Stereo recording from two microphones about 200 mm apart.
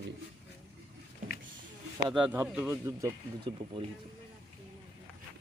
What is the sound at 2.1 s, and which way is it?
Speech, 5° right (ahead or behind).